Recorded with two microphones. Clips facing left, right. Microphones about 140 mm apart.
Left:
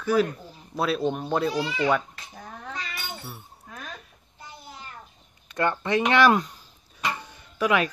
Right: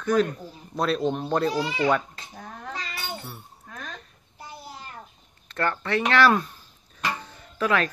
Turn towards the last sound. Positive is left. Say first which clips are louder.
# left 1 dB
turn(degrees=15)  # may be behind; listen again after turning